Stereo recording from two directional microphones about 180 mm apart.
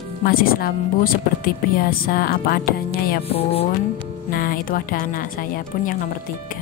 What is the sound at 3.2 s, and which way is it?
Speech, 35° left (ahead or behind).